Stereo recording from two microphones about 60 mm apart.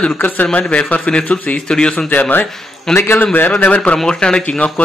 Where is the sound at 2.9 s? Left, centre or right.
Left.